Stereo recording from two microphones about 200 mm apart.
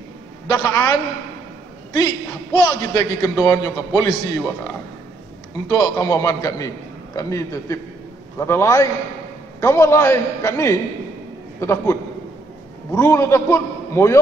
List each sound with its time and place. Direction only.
0.5 s a man's voice: 20° left (ahead or behind)
2.5 s a man's voice: 20° left (ahead or behind)